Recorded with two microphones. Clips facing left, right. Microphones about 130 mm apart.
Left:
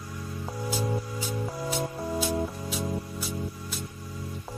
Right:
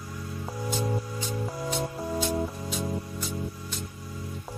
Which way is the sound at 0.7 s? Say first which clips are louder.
Even; 5° left (ahead or behind).